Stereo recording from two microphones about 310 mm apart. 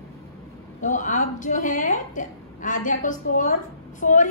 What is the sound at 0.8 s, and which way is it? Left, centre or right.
A woman's voice, left.